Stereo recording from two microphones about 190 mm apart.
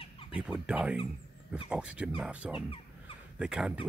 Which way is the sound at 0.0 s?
30° left (ahead or behind).